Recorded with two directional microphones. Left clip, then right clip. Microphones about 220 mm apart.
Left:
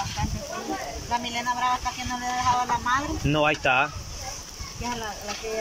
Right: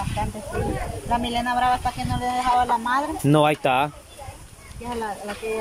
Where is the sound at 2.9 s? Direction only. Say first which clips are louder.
Right 3 dB; 25° right (ahead or behind).